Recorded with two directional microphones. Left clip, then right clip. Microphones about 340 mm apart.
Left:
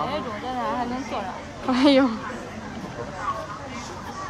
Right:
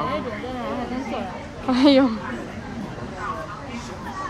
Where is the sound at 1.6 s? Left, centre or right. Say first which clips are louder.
Right 2 dB; centre.